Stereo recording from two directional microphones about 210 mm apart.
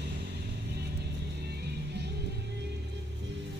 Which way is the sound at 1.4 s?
50° right (ahead or behind).